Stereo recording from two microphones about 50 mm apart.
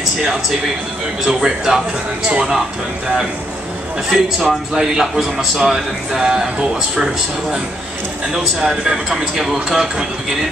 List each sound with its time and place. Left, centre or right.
1.2 s a man's voice: centre
4.1 s a man's voice: centre
8.5 s a man's voice: centre